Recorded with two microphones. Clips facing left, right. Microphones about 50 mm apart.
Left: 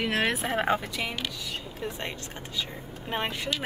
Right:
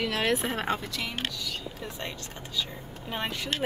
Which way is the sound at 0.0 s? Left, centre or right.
Left.